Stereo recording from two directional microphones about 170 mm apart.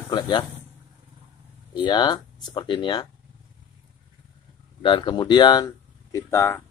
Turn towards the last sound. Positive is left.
turn(degrees=15)  # may be behind; listen again after turning